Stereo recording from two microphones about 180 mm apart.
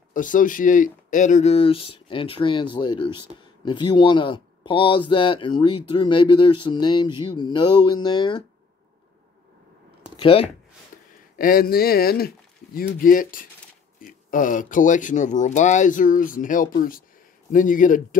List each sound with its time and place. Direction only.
0.1 s speech: 45° left (ahead or behind); by 8.5 s 25° left (ahead or behind)
10.1 s speech: 30° left (ahead or behind)
11.3 s speech: 50° left (ahead or behind)